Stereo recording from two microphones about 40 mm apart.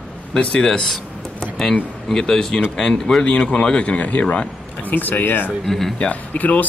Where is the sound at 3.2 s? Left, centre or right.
Left.